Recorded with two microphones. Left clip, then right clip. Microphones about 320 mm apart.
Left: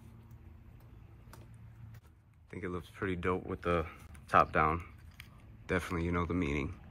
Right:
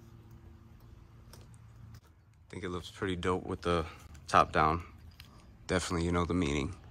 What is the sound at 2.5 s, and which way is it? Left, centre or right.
Speech, centre.